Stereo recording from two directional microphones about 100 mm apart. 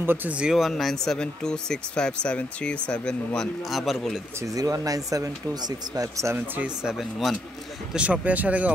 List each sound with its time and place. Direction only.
0.0 s speech: 20° right (ahead or behind); by 3.4 s 10° left (ahead or behind)
3.7 s speech: centre (ahead or behind)
4.4 s speech: 35° right (ahead or behind)
6.3 s speech: 20° right (ahead or behind)
6.8 s speech: 5° right (ahead or behind)
7.9 s speech: 15° right (ahead or behind)